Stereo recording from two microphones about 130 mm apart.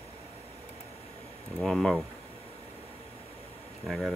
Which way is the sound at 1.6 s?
Centre (ahead or behind).